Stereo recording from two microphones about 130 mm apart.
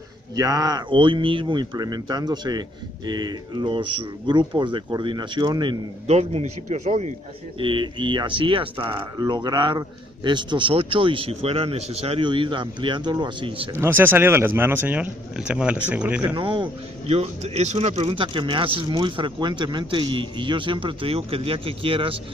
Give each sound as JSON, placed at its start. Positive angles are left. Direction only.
{"t": 0.4, "sound": "speech", "side_deg": -30}
{"t": 6.0, "sound": "a man's voice", "side_deg": -55}
{"t": 7.5, "sound": "speech", "side_deg": -40}
{"t": 12.3, "sound": "speech", "side_deg": -40}
{"t": 13.7, "sound": "speech", "side_deg": -15}
{"t": 16.3, "sound": "speech", "side_deg": -40}
{"t": 17.1, "sound": "speech", "side_deg": -55}